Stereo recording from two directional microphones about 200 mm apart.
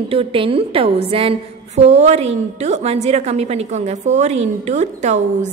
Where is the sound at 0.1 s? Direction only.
25° right (ahead or behind).